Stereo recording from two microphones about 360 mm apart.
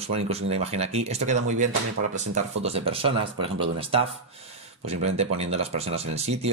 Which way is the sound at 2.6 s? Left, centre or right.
Centre.